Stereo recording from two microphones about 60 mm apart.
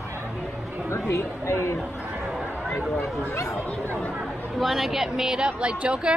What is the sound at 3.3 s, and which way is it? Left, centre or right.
Speech, left.